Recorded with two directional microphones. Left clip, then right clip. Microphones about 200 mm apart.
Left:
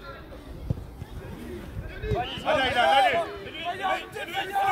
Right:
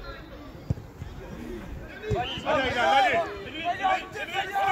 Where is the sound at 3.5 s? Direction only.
55° left (ahead or behind).